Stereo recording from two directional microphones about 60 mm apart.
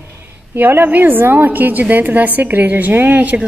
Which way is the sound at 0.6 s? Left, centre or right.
Right.